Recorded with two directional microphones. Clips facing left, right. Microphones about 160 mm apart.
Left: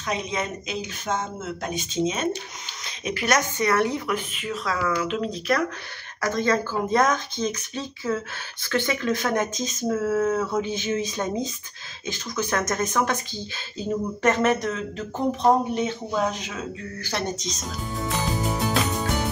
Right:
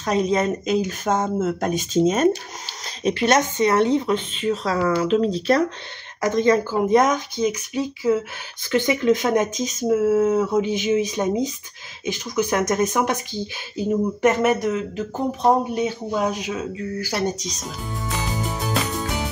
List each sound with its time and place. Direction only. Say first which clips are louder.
0.0 s speech: right 8 dB; 40° right (ahead or behind)
3.0 s speech: right 5 dB; 30° right (ahead or behind)
6.2 s speech: right 5 dB; 20° right (ahead or behind)